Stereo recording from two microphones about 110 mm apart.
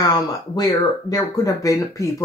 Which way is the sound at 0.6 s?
35° left (ahead or behind).